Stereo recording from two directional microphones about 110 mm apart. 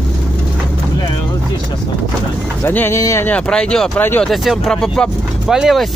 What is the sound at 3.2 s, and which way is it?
Speech, 10° left (ahead or behind).